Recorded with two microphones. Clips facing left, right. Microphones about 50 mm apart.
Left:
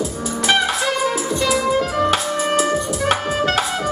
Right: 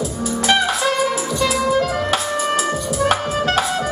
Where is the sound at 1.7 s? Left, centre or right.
Left.